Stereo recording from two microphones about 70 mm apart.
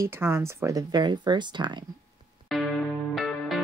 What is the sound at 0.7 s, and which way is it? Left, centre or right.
Speech, right.